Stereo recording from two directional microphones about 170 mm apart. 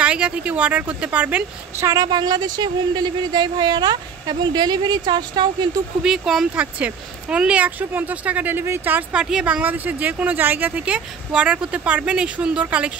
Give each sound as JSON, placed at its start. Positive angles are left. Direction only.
{"t": 0.0, "sound": "a woman's voice", "side_deg": -5}
{"t": 6.0, "sound": "speech", "side_deg": 0}